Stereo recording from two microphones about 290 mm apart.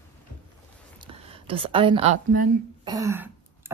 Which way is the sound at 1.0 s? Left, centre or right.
Centre.